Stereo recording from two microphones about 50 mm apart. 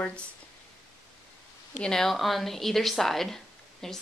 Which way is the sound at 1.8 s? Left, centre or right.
Centre.